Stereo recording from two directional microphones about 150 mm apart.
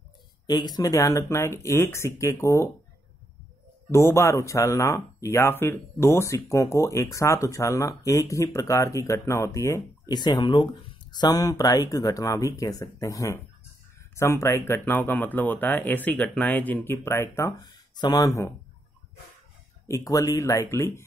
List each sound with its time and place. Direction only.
0.5 s speech: 25° left (ahead or behind)
3.9 s speech: 20° left (ahead or behind)
19.9 s speech: 20° left (ahead or behind)